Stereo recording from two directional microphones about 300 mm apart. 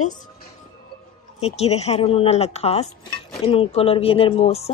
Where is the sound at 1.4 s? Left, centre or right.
Left.